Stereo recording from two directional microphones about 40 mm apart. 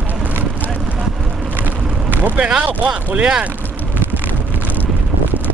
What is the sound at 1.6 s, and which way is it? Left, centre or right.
Vehicle, right.